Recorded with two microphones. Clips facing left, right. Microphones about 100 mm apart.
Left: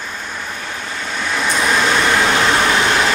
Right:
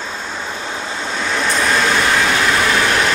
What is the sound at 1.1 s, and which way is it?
Vehicle, centre (ahead or behind).